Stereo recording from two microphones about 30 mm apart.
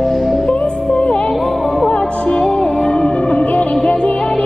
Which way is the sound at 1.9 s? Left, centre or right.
Left.